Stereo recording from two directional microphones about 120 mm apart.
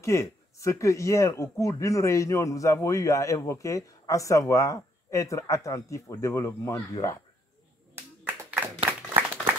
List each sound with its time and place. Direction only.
0.0 s speech: 25° left (ahead or behind)
7.9 s clapping: 15° right (ahead or behind)
8.8 s applause: 15° right (ahead or behind)